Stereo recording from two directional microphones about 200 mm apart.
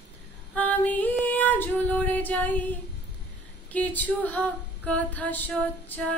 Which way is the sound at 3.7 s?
10° left (ahead or behind).